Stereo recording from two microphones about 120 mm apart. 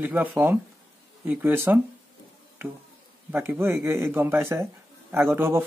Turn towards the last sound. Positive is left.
turn(degrees=-20)  # may be behind; listen again after turning